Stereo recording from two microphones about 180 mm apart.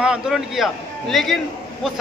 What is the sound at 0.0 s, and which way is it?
A man's voice, 5° right (ahead or behind).